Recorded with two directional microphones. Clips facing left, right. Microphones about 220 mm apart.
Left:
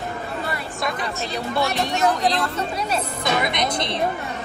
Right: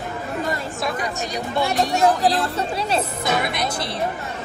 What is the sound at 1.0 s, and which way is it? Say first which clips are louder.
Speech: even; 15° right (ahead or behind).